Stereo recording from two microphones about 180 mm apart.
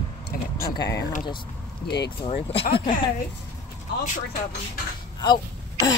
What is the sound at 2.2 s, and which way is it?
Speech, 30° left (ahead or behind).